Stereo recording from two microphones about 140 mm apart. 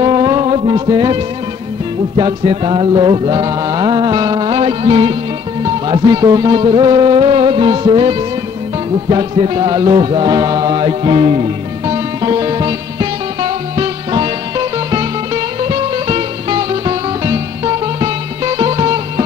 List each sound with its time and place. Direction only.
0.0 s music: 30° right (ahead or behind)